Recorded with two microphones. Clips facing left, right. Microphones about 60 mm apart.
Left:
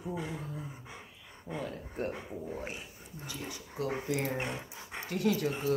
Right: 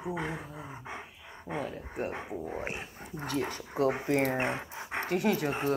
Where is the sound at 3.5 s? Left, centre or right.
Right.